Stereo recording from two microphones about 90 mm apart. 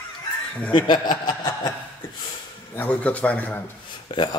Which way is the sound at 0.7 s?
55° left (ahead or behind).